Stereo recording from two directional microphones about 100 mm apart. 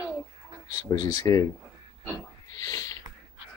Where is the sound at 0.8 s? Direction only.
35° left (ahead or behind).